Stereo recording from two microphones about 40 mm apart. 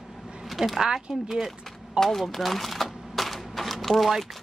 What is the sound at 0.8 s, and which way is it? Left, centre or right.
Speech, centre.